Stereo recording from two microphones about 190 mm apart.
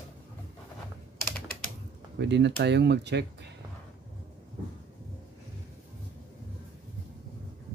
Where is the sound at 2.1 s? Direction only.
65° right (ahead or behind).